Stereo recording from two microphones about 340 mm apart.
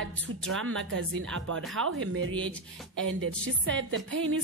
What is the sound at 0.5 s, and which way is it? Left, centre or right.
Music, right.